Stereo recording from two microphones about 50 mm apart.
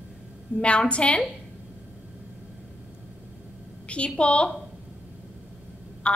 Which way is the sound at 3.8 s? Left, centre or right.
Left.